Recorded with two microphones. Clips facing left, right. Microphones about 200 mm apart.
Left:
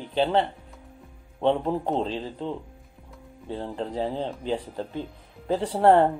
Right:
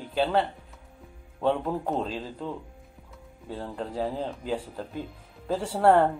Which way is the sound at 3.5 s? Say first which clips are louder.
Left 3 dB; 20° left (ahead or behind).